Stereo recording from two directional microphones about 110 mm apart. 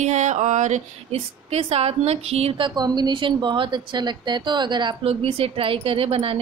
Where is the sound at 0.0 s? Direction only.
90° right; by 4.9 s 40° right (ahead or behind).